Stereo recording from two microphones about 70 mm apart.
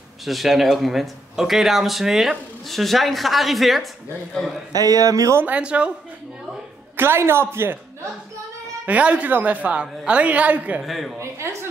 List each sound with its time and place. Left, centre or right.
0.2 s speech: centre
4.7 s speech: right
5.5 s speech: centre
7.0 s a man's voice: right
8.8 s a woman's voice: centre
10.8 s speech: centre
11.1 s a woman's voice: right